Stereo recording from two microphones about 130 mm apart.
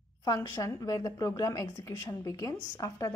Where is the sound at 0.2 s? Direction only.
30° left (ahead or behind).